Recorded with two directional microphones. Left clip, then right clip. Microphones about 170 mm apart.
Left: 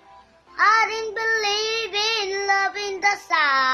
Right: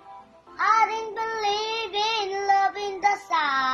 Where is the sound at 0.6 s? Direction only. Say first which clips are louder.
Left 3 dB; 20° left (ahead or behind).